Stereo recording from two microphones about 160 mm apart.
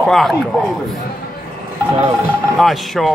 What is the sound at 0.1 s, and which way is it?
Speech, centre (ahead or behind).